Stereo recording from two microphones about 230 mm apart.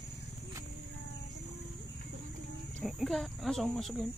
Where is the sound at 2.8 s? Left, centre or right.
Centre.